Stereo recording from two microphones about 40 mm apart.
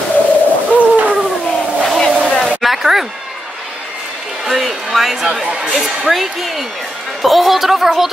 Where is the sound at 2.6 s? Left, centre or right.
Centre.